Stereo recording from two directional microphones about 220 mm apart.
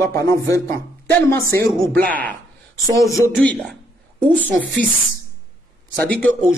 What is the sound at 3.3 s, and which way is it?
Speech, centre (ahead or behind).